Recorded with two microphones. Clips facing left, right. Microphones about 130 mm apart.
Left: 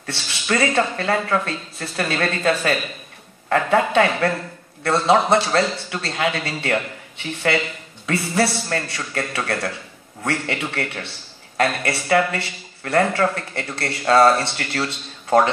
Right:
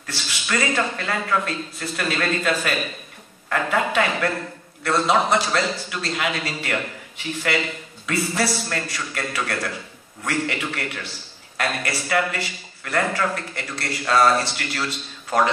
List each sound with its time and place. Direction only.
0.0 s a man's voice: 30° left (ahead or behind)